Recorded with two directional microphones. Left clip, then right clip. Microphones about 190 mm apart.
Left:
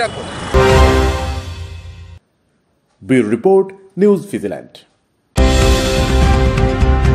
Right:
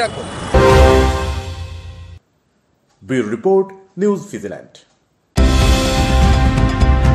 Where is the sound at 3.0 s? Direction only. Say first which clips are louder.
Left 4 dB; 30° left (ahead or behind).